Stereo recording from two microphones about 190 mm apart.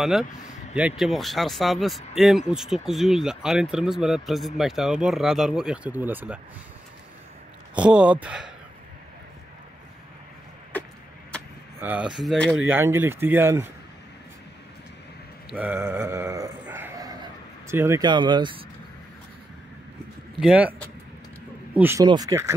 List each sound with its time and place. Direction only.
0.0 s speech: centre (ahead or behind)
7.7 s speech: 5° right (ahead or behind)
11.8 s speech: 5° right (ahead or behind)
12.6 s speech: 10° right (ahead or behind)
15.5 s a sound: 10° right (ahead or behind); by 18.6 s 25° right (ahead or behind)
20.3 s speech: 5° right (ahead or behind)
21.7 s speech: 10° right (ahead or behind)